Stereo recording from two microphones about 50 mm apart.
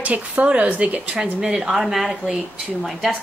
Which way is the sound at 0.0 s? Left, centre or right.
Right.